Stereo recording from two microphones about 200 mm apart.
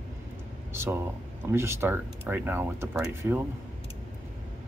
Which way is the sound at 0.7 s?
10° right (ahead or behind).